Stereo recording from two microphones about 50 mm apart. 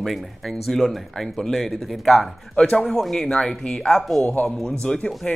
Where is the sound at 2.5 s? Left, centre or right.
Centre.